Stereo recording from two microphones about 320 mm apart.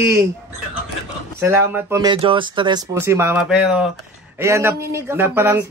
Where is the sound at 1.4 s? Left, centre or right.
Centre.